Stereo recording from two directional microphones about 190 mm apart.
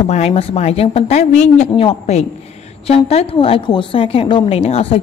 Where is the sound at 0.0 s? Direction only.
35° left (ahead or behind).